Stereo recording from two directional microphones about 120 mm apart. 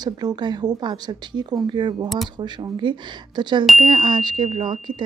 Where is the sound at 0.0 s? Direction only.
35° right (ahead or behind).